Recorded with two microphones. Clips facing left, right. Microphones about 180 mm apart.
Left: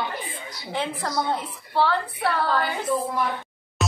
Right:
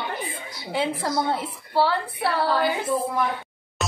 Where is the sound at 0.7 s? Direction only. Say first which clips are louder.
Right 3 dB; 10° right (ahead or behind).